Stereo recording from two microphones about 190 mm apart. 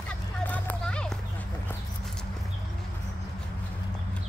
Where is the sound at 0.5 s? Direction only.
5° left (ahead or behind).